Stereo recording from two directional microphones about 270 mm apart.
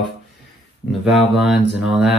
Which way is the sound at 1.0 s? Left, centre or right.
Centre.